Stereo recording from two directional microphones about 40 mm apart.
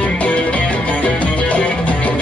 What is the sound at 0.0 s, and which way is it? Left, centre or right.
Music, left.